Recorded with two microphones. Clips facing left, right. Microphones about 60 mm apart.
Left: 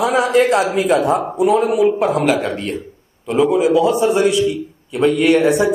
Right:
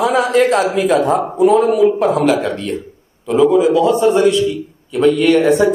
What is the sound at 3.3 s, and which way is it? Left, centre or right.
A man's voice, centre.